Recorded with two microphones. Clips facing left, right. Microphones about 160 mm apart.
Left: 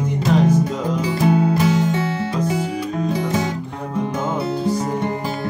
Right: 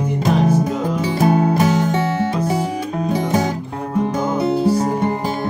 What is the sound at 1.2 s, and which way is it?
Music, 50° right (ahead or behind).